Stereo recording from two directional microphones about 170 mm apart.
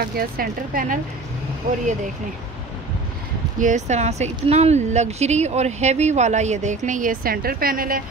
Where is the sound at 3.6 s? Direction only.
45° right (ahead or behind).